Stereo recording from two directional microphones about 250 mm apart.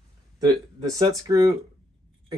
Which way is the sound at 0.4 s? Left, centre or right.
Centre.